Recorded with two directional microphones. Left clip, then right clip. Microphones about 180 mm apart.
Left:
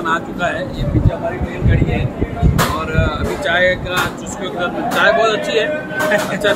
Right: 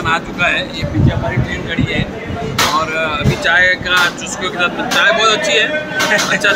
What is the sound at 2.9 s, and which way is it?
Speech, 10° left (ahead or behind).